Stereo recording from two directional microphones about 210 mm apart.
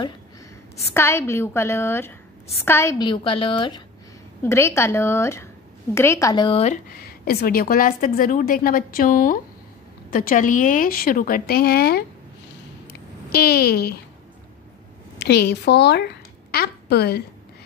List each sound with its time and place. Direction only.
0.9 s a woman's voice: 15° left (ahead or behind)
4.4 s a woman's voice: 15° left (ahead or behind); by 12.0 s 45° left (ahead or behind)
13.3 s a woman's voice: 50° left (ahead or behind)
15.1 s a woman's voice: 50° left (ahead or behind)